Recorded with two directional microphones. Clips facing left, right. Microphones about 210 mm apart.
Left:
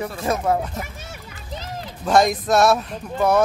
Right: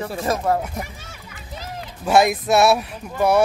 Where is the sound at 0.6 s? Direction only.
10° right (ahead or behind).